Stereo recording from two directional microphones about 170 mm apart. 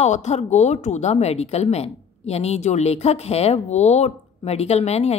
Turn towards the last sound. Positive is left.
turn(degrees=40)  # may be behind; listen again after turning